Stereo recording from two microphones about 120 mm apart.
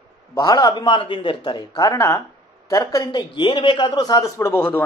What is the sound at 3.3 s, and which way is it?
Speech, 45° left (ahead or behind).